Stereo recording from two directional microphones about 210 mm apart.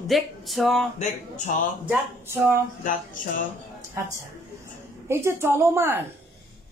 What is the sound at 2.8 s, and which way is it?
Speech, 40° left (ahead or behind).